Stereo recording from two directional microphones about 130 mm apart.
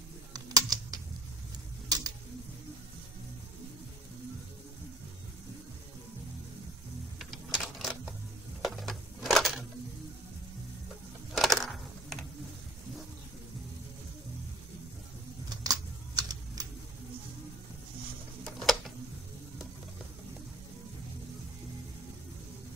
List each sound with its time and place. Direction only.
0.3 s typing: 30° right (ahead or behind)
1.9 s tick-tock: 30° right (ahead or behind)
7.2 s a sound: centre (ahead or behind)
11.3 s a sound: centre (ahead or behind)
15.5 s typing: 30° right (ahead or behind)
18.4 s tick-tock: 5° left (ahead or behind)